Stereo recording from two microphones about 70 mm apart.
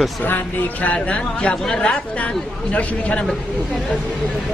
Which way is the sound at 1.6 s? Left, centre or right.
Centre.